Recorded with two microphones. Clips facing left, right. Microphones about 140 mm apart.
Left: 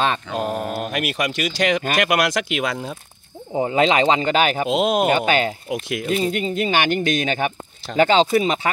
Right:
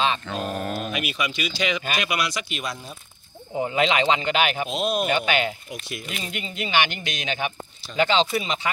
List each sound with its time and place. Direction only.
0.3 s mantra: 10° left (ahead or behind)
0.7 s speech: 60° left (ahead or behind)
2.1 s speech: 90° left
3.5 s speech: 30° left (ahead or behind)
4.6 s speech: 90° left
5.0 s speech: 45° left (ahead or behind)
5.7 s speech: 90° left
6.0 s speech: 40° left (ahead or behind)